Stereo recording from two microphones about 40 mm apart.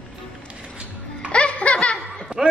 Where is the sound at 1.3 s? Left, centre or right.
Left.